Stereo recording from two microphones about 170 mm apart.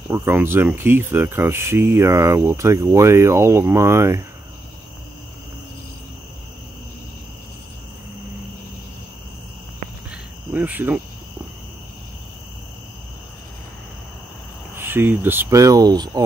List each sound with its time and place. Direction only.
0.1 s speech: 15° right (ahead or behind)
10.5 s cricket: 10° right (ahead or behind)
14.8 s speech: 15° right (ahead or behind)